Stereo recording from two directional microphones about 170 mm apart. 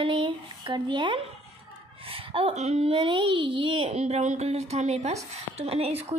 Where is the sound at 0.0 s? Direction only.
30° right (ahead or behind).